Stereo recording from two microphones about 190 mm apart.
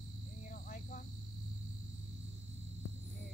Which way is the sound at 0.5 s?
45° left (ahead or behind).